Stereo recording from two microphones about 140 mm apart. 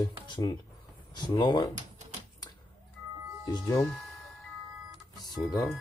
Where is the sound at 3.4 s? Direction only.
20° left (ahead or behind).